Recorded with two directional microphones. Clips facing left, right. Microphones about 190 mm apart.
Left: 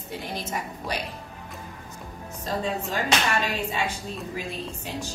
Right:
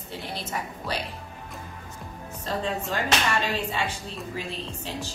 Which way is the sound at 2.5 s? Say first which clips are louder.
Even; 10° left (ahead or behind).